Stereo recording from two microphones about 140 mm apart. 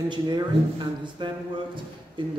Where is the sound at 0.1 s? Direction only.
30° right (ahead or behind).